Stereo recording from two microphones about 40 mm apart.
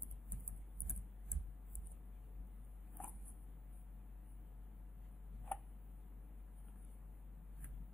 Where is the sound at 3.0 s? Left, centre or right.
Left.